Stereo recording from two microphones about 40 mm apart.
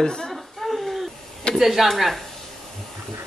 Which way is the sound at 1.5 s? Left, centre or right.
Centre.